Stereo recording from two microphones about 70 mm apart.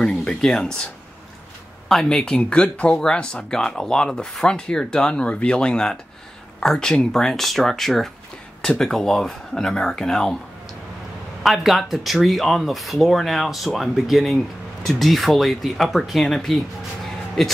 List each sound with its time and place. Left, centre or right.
0.0 s speech: centre
1.9 s speech: centre
11.4 s speech: centre